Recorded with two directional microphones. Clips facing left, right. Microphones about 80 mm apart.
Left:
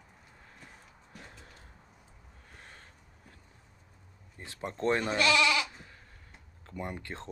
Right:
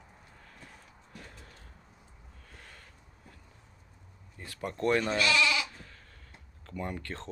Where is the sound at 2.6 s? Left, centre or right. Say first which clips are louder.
Left 1 dB; left.